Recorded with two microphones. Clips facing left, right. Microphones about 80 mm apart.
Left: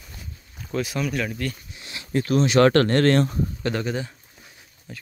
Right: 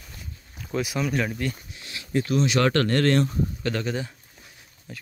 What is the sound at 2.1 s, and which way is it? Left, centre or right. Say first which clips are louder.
Speech: left 4 dB; left.